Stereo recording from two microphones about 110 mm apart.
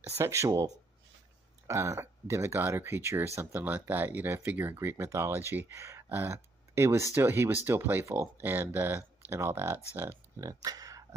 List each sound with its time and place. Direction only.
0.1 s speech: 25° right (ahead or behind)